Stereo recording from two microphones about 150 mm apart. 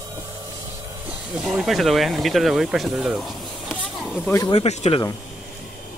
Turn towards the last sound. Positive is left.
turn(degrees=45)  # may be behind; listen again after turning